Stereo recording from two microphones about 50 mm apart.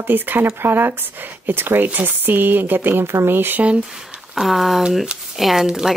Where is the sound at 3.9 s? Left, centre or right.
Centre.